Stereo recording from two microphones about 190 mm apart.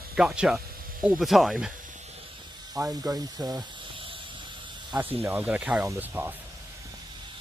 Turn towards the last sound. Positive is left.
turn(degrees=-10)  # may be behind; listen again after turning